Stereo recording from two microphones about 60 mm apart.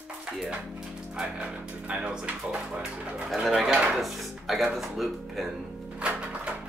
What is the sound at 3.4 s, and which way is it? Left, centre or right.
Speech, centre.